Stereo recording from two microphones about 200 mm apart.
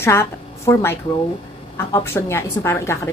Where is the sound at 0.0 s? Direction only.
15° left (ahead or behind).